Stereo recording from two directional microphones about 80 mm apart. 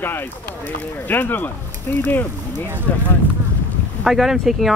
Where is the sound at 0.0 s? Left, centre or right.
Left.